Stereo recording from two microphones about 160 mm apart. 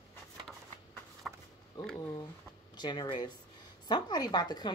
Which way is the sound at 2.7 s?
25° left (ahead or behind).